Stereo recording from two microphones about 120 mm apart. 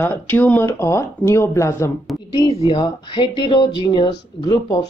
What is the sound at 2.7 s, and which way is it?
Speech, 40° left (ahead or behind).